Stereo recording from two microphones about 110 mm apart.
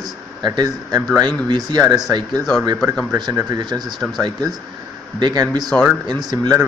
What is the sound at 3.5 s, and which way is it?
Speech, 40° right (ahead or behind).